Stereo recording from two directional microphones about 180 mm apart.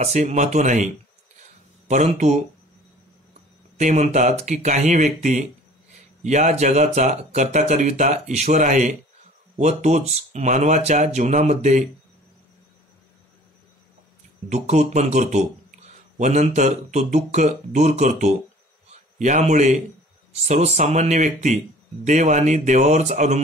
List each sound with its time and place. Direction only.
0.0 s speech: 40° right (ahead or behind)
1.9 s speech: 40° right (ahead or behind)
3.7 s speech: 40° right (ahead or behind)
14.5 s a man's voice: 40° right (ahead or behind)